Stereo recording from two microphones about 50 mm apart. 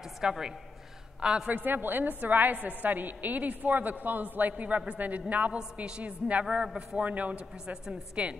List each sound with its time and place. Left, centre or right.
0.2 s a woman's voice: centre
1.5 s a woman's voice: right; by 6.8 s centre
7.0 s a man's voice: right